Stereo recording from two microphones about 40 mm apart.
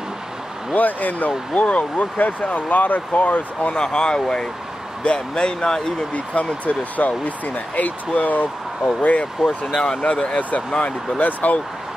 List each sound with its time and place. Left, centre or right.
0.7 s speech: left
3.7 s speech: left
6.1 s speech: left
11.1 s speech: left